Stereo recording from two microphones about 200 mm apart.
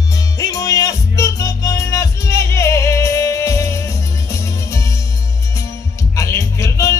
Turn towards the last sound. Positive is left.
turn(degrees=15)  # may be behind; listen again after turning